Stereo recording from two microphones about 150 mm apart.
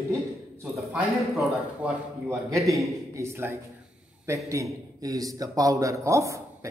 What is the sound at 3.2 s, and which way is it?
A man's voice, 15° right (ahead or behind).